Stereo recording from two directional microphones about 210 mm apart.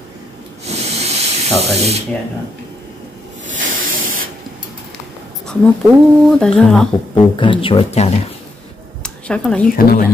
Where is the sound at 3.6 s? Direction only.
40° right (ahead or behind).